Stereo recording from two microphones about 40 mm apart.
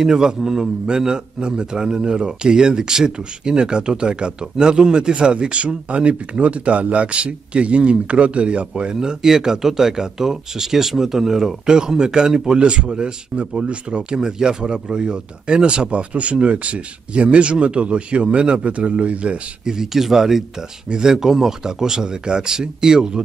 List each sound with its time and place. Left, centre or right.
0.0 s a man's voice: centre; by 19.4 s right
19.6 s speech: centre